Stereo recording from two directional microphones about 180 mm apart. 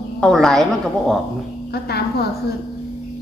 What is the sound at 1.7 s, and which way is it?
Speech, 65° left (ahead or behind).